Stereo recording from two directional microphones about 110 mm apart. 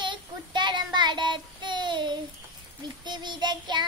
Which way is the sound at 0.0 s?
45° right (ahead or behind).